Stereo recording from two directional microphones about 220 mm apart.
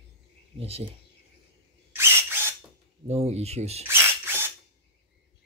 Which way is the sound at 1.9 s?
10° right (ahead or behind).